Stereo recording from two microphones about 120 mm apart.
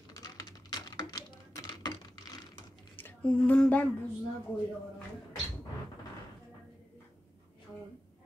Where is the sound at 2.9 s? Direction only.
15° left (ahead or behind).